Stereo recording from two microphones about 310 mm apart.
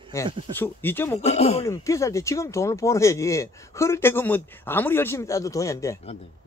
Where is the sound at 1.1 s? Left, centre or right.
Left.